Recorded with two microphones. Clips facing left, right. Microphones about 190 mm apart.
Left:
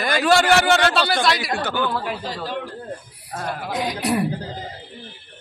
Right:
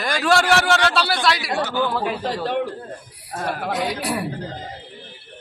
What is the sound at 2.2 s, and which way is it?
Speech, 65° right (ahead or behind).